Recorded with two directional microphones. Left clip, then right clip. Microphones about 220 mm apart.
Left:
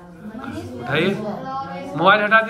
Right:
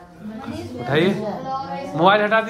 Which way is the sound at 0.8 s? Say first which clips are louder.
Right 1 dB; 20° right (ahead or behind).